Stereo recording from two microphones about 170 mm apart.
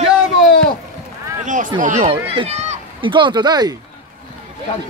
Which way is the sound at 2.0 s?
35° right (ahead or behind).